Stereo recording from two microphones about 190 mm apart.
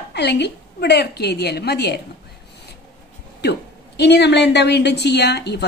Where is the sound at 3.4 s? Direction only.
65° left (ahead or behind).